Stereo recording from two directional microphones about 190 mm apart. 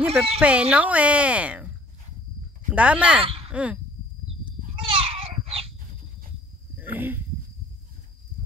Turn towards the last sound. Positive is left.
turn(degrees=-10)  # may be behind; listen again after turning